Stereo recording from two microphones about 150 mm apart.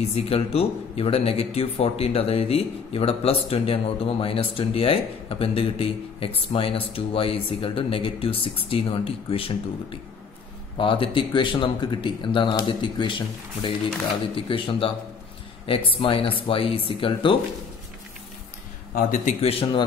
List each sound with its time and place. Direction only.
0.1 s a man's voice: 40° left (ahead or behind)
18.9 s a man's voice: 65° left (ahead or behind)
19.4 s a man's voice: 40° left (ahead or behind)